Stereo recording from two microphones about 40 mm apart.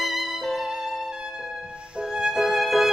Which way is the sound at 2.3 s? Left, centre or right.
Centre.